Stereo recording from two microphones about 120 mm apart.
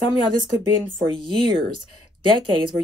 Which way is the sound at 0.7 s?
45° right (ahead or behind).